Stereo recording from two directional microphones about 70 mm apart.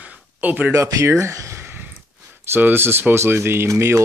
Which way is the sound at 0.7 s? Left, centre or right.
Right.